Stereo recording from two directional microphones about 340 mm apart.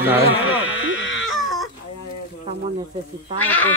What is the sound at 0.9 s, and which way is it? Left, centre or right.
Baby cry, left.